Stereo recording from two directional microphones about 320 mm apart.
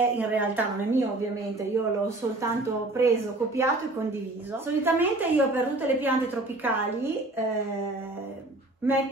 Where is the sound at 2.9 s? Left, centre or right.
Centre.